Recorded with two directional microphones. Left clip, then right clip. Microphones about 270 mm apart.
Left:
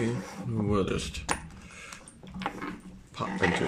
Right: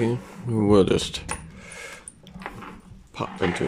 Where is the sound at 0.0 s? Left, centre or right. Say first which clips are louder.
Right 6 dB; centre.